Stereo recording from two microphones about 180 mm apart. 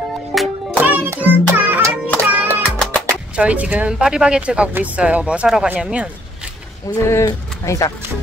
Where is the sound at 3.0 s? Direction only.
10° right (ahead or behind).